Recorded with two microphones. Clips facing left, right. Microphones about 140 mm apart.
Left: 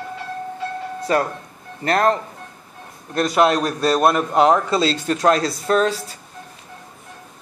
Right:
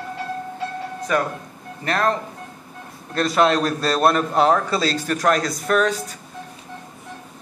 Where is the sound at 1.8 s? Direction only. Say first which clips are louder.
Left 4 dB; 35° left (ahead or behind).